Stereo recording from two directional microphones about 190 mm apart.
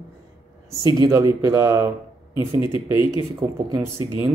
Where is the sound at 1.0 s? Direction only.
20° right (ahead or behind).